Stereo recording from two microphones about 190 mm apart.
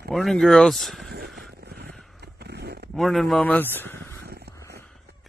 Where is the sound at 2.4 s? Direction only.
60° right (ahead or behind).